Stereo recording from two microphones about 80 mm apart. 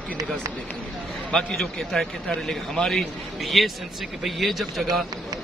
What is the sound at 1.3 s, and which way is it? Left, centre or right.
A man's voice, centre.